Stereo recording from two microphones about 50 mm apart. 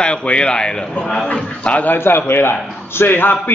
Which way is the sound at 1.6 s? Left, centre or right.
Left.